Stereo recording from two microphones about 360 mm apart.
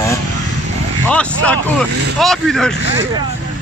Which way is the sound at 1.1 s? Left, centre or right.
Centre.